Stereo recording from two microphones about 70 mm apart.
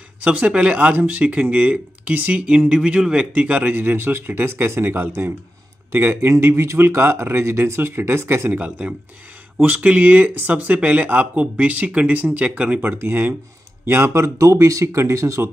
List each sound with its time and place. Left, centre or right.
0.2 s a man's voice: centre
3.7 s speech: right
8.6 s speech: right
13.0 s speech: right